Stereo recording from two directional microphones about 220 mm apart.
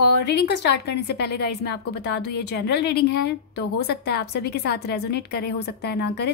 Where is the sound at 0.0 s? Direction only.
50° left (ahead or behind).